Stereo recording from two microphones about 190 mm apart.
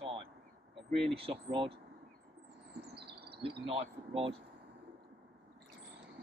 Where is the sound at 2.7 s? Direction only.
60° right (ahead or behind).